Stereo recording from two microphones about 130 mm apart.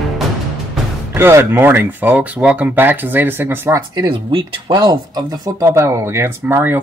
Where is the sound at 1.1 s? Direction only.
20° right (ahead or behind).